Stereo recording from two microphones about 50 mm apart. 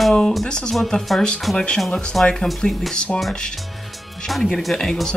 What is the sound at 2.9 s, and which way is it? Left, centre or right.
Speech, centre.